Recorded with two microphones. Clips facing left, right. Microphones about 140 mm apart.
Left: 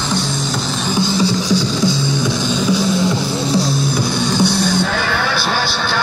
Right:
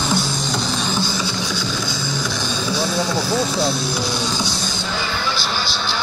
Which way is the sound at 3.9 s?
55° left (ahead or behind).